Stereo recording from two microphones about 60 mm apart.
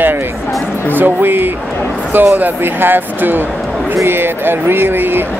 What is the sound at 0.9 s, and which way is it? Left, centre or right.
Speech, right.